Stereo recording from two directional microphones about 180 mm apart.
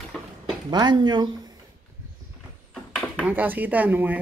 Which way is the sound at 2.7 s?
Centre (ahead or behind).